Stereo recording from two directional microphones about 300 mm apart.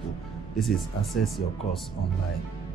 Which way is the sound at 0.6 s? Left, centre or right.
Centre.